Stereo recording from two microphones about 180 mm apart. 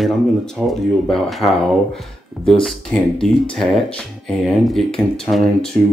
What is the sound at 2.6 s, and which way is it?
Speech, 5° left (ahead or behind).